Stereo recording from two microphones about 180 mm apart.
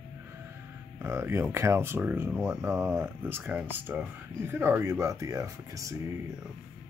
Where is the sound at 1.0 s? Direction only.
15° right (ahead or behind).